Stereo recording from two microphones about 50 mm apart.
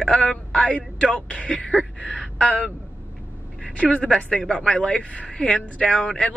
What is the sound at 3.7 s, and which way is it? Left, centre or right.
Speech, centre.